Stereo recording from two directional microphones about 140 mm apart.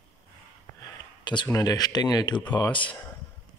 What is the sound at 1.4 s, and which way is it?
Speech, 25° left (ahead or behind).